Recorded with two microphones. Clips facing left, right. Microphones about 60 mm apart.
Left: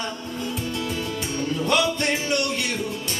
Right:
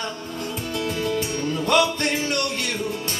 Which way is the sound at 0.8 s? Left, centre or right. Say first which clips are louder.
Right 4 dB; right.